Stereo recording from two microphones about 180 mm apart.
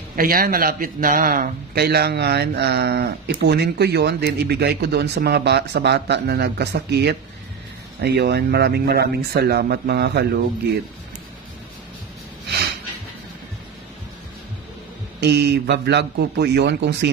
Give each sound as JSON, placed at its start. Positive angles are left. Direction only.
{"t": 0.1, "sound": "a man's voice", "side_deg": -55}
{"t": 15.1, "sound": "speech", "side_deg": -70}